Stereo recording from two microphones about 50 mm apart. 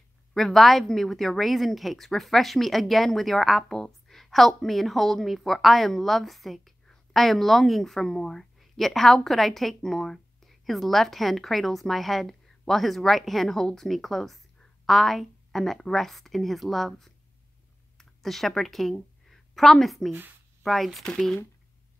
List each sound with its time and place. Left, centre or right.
0.3 s a woman's voice: centre
19.2 s a sound: centre
20.1 s speech: right
20.6 s a woman's voice: centre